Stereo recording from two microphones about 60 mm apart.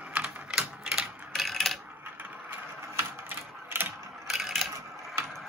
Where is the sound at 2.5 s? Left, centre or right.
Right.